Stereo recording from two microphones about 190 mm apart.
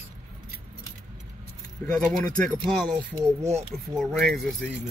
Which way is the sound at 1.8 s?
5° left (ahead or behind).